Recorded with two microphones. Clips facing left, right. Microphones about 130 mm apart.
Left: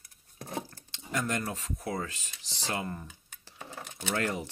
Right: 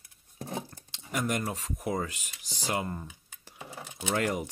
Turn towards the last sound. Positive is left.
turn(degrees=-15)  # may be behind; listen again after turning